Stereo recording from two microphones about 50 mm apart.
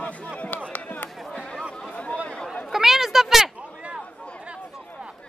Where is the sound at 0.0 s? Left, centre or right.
Left.